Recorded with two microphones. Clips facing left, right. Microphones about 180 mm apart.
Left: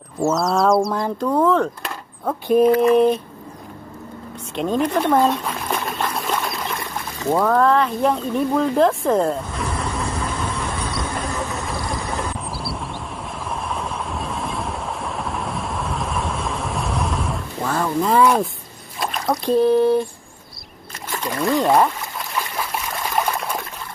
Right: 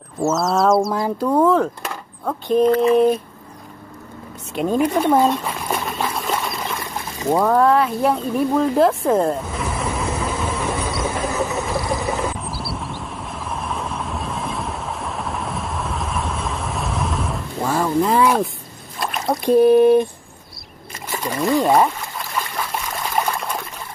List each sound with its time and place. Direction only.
0.2 s speech: centre (ahead or behind)
2.4 s speech: 10° left (ahead or behind)
4.6 s a sound: 5° right (ahead or behind)
7.2 s speech: 15° right (ahead or behind)
10.9 s a sound: 5° right (ahead or behind)
17.6 s speech: 10° right (ahead or behind)
18.9 s splash: centre (ahead or behind)
19.7 s a sound: 20° right (ahead or behind)
21.1 s trickle: 5° right (ahead or behind)